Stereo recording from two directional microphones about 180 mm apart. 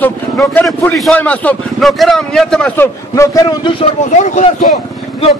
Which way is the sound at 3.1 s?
20° left (ahead or behind).